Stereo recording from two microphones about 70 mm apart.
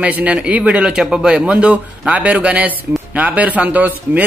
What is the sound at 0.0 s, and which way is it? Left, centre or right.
A man's voice, right.